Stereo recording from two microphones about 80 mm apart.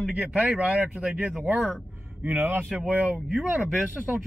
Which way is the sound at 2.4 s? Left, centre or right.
Right.